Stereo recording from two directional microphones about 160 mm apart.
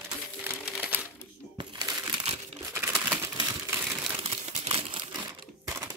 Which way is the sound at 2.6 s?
15° right (ahead or behind).